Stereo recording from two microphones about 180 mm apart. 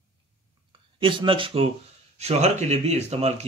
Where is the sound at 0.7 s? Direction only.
25° right (ahead or behind).